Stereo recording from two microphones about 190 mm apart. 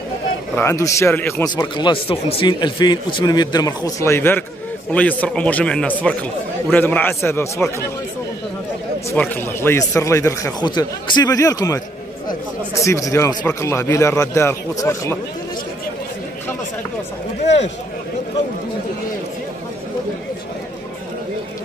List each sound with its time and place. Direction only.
0.6 s speech: 15° left (ahead or behind)
9.1 s speech: 10° left (ahead or behind)